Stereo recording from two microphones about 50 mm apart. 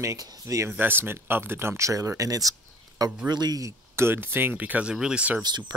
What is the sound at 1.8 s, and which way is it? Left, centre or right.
Speech, right.